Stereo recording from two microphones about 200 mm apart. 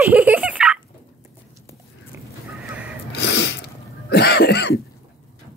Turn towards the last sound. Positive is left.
turn(degrees=55)  # may be behind; listen again after turning